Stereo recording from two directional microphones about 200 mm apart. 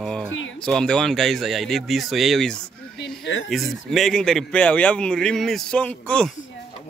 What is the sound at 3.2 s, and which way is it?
Speech, 70° left (ahead or behind).